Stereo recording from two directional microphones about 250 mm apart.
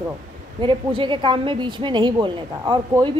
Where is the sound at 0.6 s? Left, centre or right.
Centre.